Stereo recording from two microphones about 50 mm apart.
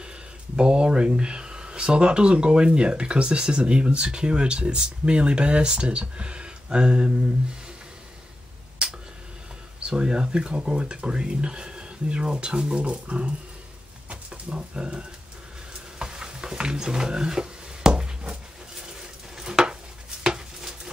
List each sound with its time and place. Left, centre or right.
0.6 s speech: centre
9.8 s speech: centre
14.0 s a sound: right
19.3 s stir: centre